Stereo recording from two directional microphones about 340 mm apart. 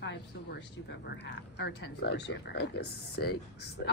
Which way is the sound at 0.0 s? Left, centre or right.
Left.